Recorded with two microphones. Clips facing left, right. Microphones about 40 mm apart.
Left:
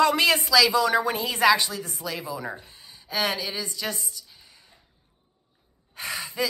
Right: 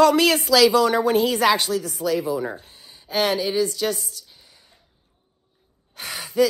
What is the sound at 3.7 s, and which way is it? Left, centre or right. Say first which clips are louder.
Speech: right 7 dB; left.